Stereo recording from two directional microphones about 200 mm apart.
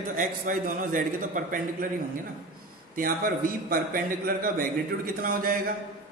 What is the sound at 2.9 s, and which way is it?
A man's voice, 45° right (ahead or behind).